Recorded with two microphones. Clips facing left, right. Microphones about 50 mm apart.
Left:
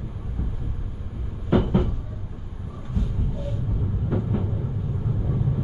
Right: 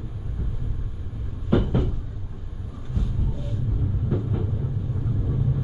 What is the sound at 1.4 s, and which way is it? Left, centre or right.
Cupboard open or close, centre.